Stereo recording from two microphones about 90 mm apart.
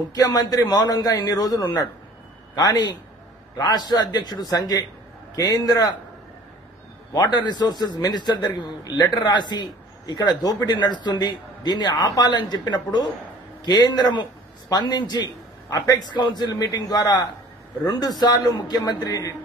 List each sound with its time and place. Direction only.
0.1 s a man's voice: 45° left (ahead or behind)
7.2 s a man's voice: 55° left (ahead or behind)